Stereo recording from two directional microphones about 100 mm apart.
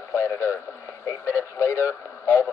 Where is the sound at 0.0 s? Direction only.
30° left (ahead or behind).